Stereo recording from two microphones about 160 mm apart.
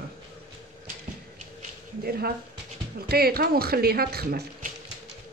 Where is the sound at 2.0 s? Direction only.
70° right (ahead or behind).